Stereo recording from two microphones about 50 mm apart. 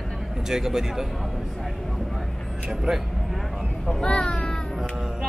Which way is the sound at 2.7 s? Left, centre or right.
Centre.